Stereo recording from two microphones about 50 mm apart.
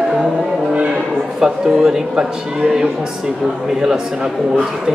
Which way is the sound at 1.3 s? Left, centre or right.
Centre.